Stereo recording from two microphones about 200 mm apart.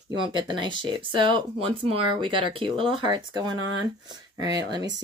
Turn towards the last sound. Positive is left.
turn(degrees=-20)  # may be behind; listen again after turning